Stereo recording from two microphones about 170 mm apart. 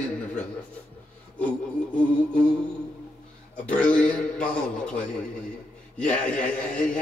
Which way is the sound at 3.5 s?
5° left (ahead or behind).